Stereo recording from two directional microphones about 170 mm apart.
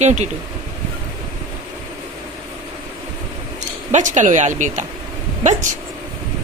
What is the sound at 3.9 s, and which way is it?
Speech, 45° right (ahead or behind).